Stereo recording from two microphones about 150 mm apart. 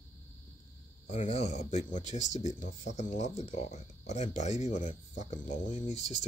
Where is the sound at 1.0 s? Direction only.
50° left (ahead or behind).